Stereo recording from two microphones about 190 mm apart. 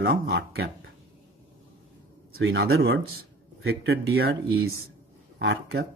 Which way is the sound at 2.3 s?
80° right.